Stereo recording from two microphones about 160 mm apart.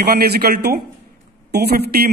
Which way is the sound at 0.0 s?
80° right.